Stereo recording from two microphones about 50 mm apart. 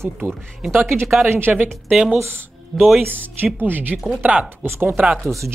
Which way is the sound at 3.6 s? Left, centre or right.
Right.